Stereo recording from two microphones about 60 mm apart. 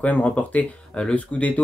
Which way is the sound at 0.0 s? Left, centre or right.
Left.